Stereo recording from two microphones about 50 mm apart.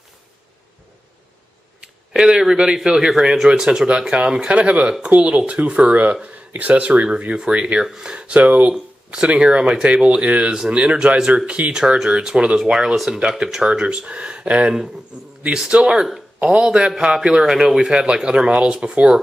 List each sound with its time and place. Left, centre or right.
1.8 s a man's voice: centre
12.7 s a man's voice: centre